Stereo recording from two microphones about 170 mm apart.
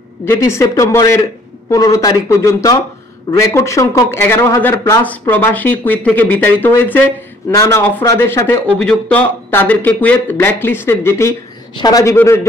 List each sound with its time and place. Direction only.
0.2 s speech: 15° left (ahead or behind)